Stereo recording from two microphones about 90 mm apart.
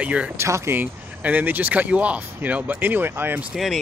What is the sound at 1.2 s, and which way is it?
Speech, 20° right (ahead or behind).